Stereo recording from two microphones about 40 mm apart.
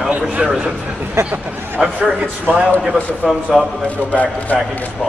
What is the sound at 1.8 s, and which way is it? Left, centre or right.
Speech, centre.